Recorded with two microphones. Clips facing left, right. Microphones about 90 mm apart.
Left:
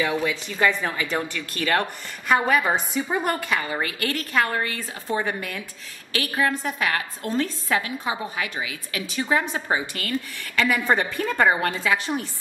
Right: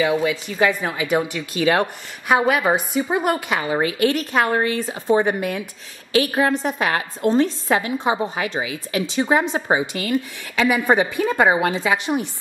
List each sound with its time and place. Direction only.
0.0 s a woman's voice: 5° right (ahead or behind)